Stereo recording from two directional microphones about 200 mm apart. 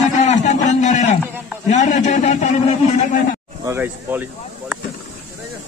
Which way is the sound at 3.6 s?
10° right (ahead or behind).